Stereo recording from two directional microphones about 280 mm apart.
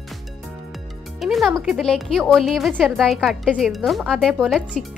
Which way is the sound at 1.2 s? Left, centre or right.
Centre.